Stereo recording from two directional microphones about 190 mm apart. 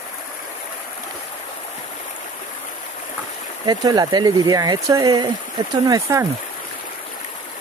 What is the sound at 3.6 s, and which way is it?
Speech, 20° right (ahead or behind).